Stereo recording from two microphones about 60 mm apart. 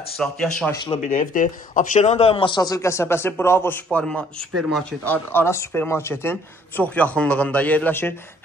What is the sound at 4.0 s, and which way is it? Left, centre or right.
Speech, centre.